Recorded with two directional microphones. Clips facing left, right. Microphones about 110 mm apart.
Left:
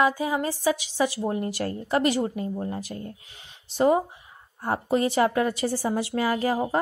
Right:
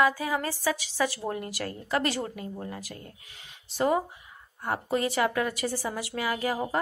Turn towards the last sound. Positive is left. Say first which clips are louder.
# left 5 dB
turn(degrees=30)  # may be behind; listen again after turning